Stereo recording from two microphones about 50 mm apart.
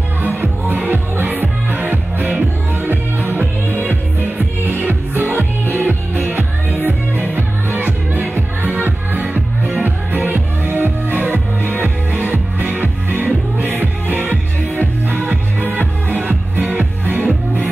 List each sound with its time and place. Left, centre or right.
0.8 s music: right
15.7 s music: right